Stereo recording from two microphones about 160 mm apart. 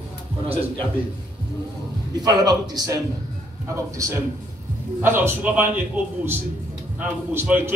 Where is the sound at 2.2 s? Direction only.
25° right (ahead or behind).